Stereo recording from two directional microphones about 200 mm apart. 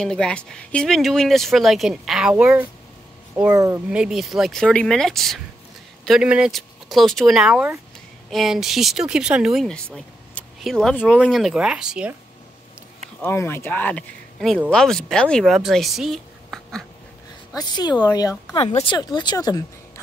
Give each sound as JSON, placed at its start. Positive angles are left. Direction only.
{"t": 0.0, "sound": "speech", "side_deg": 5}
{"t": 3.5, "sound": "speech", "side_deg": -15}
{"t": 3.9, "sound": "speech", "side_deg": -5}
{"t": 13.2, "sound": "speech", "side_deg": 10}
{"t": 17.5, "sound": "speech", "side_deg": 20}
{"t": 18.6, "sound": "speech", "side_deg": 30}